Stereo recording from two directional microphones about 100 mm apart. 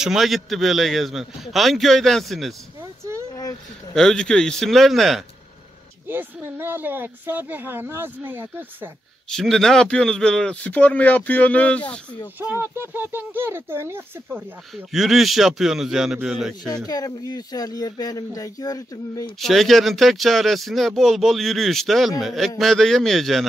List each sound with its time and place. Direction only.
0.0 s speech: 5° right (ahead or behind)
2.8 s a sound: 30° right (ahead or behind)
3.9 s speech: 5° left (ahead or behind)
6.0 s speech: 20° right (ahead or behind)
9.3 s speech: 5° left (ahead or behind)
12.4 s speech: 20° right (ahead or behind)
14.9 s speech: centre (ahead or behind)
16.6 s speech: 40° left (ahead or behind)
19.4 s speech: centre (ahead or behind)